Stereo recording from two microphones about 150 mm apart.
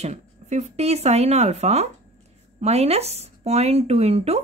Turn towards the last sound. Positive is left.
turn(degrees=-45)  # may be behind; listen again after turning